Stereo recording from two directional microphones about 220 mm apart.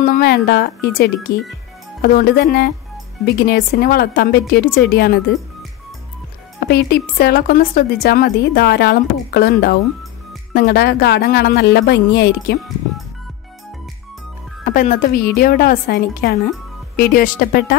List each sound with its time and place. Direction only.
0.0 s a woman's voice: 40° left (ahead or behind)
6.6 s a woman's voice: 45° left (ahead or behind)
14.6 s a woman's voice: 35° left (ahead or behind)